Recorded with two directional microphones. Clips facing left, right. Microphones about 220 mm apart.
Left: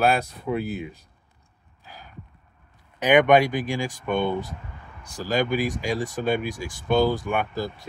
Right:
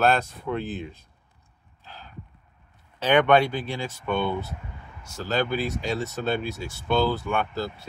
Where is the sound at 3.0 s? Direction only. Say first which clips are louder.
Left 2 dB; 15° left (ahead or behind).